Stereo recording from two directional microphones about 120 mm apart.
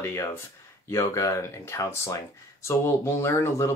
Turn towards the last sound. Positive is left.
turn(degrees=25)  # may be behind; listen again after turning